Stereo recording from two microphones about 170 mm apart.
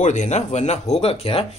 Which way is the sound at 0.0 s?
45° left (ahead or behind).